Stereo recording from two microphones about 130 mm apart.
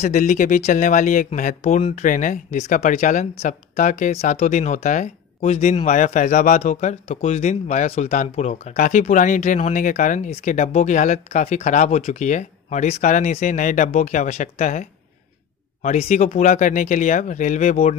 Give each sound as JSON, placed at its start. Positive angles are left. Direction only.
{"t": 0.0, "sound": "speech", "side_deg": 70}
{"t": 1.8, "sound": "speech", "side_deg": 50}
{"t": 2.0, "sound": "speech", "side_deg": 85}